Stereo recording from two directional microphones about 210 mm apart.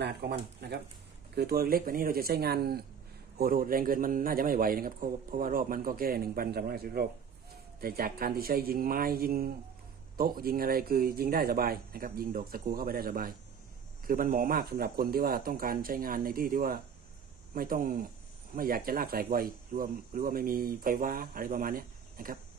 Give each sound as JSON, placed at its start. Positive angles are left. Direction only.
{"t": 0.0, "sound": "a man's voice", "side_deg": -50}